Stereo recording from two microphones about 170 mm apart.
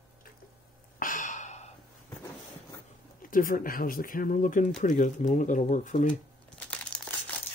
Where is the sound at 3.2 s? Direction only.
55° left (ahead or behind).